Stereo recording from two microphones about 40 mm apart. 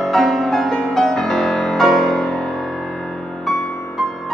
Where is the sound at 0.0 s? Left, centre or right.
Centre.